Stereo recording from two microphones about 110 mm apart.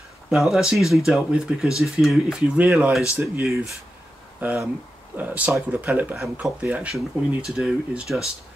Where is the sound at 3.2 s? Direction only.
25° right (ahead or behind).